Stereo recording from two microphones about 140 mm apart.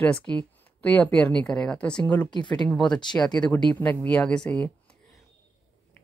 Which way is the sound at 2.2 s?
30° left (ahead or behind).